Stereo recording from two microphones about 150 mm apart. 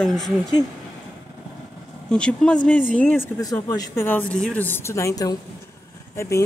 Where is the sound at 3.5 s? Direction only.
25° left (ahead or behind).